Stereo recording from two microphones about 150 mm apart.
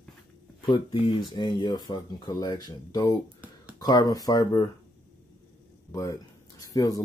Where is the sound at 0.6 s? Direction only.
35° left (ahead or behind).